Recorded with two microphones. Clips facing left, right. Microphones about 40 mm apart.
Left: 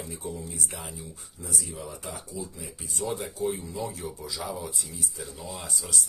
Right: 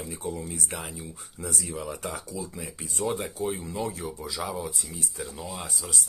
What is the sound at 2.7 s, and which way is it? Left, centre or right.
Speech, right.